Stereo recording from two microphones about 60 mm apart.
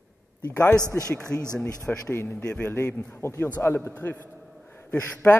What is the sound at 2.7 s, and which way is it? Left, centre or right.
A man's voice, left.